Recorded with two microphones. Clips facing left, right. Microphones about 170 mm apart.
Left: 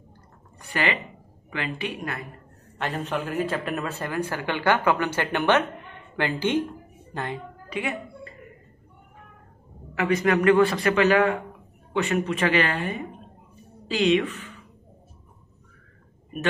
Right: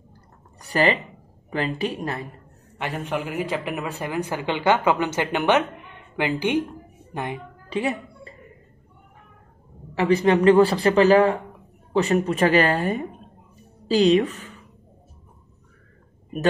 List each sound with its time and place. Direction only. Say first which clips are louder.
0.6 s a man's voice: right 6 dB; 35° right (ahead or behind)
2.8 s speech: right 1 dB; 15° right (ahead or behind)
7.7 s music: right 5 dB; 30° right (ahead or behind)
9.9 s a man's voice: right 4 dB; 30° right (ahead or behind)